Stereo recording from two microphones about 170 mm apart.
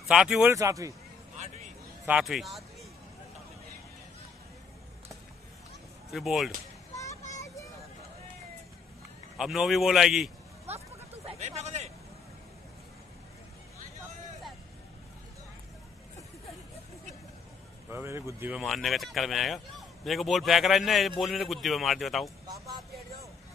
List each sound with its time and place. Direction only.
0.1 s speech: 5° right (ahead or behind)
0.5 s speech: 20° right (ahead or behind)
1.3 s vehicle: 45° right (ahead or behind)
2.0 s speech: 5° right (ahead or behind)
6.1 s speech: centre (ahead or behind)
7.3 s vehicle: 20° left (ahead or behind)
9.4 s speech: centre (ahead or behind)
11.2 s a sound: 40° right (ahead or behind)
17.9 s speech: 15° right (ahead or behind)
18.6 s speech: centre (ahead or behind)